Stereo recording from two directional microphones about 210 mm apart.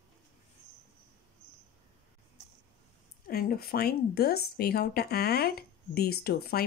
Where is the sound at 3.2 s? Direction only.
45° left (ahead or behind).